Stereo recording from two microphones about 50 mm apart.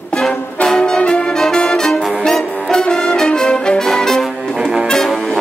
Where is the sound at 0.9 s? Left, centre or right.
Centre.